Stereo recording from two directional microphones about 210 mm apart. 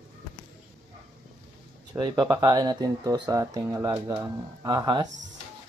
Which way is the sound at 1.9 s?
15° right (ahead or behind).